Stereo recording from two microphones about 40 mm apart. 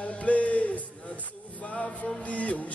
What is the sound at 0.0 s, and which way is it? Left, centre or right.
Music, left.